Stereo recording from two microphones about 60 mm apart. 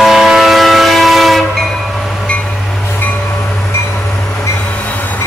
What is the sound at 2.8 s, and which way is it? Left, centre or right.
Train, left.